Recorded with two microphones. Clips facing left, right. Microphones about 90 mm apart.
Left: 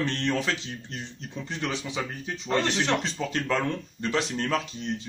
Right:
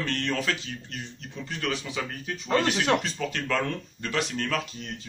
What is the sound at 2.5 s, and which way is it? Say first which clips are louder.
Speech: right 2 dB; 10° right (ahead or behind).